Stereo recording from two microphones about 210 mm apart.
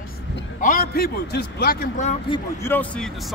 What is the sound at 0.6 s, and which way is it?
A man's voice, 40° left (ahead or behind).